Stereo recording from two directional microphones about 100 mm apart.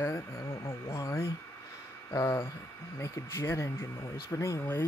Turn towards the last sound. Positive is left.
turn(degrees=25)  # may be behind; listen again after turning